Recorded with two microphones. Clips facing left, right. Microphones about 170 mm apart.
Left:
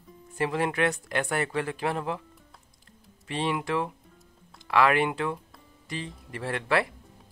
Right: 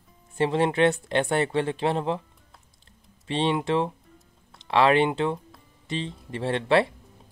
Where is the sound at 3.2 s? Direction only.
25° right (ahead or behind).